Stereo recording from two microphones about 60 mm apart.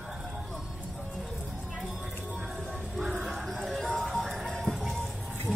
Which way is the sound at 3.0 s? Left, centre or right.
Centre.